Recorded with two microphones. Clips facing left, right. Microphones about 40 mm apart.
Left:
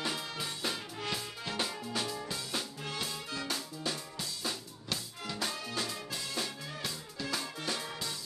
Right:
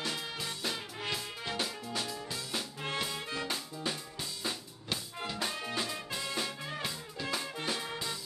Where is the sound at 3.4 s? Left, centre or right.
Centre.